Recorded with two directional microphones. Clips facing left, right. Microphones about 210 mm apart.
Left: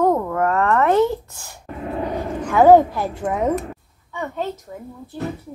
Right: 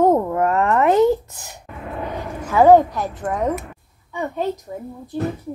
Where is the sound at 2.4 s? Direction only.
Centre (ahead or behind).